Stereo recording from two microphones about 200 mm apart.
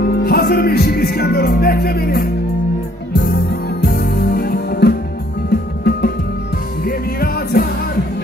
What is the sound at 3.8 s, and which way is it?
Music, 50° left (ahead or behind).